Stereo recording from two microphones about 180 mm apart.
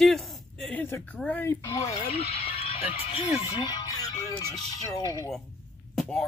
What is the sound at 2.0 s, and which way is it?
Speech, 35° left (ahead or behind).